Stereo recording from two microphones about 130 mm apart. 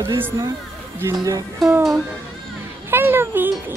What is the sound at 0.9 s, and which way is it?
Speech, 20° right (ahead or behind).